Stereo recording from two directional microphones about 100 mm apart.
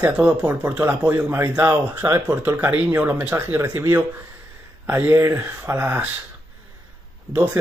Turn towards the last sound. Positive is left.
turn(degrees=-20)  # may be behind; listen again after turning